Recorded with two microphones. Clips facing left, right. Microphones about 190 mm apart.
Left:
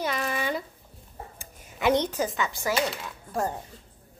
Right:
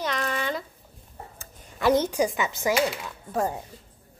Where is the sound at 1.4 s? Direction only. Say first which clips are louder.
Right 1 dB; 15° left (ahead or behind).